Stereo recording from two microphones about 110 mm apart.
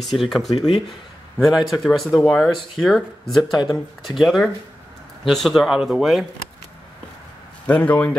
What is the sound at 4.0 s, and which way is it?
Speech, centre (ahead or behind).